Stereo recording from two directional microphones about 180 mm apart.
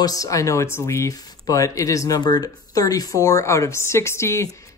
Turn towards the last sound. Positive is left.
turn(degrees=15)  # may be behind; listen again after turning